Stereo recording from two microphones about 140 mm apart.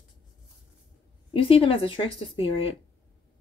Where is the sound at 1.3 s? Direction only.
40° left (ahead or behind).